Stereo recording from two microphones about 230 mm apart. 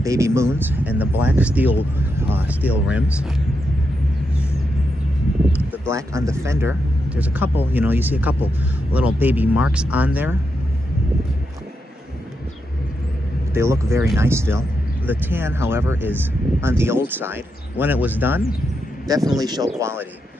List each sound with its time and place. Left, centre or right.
0.0 s speech: centre
5.9 s speech: centre
13.5 s speech: centre